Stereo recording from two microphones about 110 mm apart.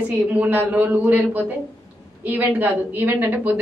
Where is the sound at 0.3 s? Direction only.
15° right (ahead or behind).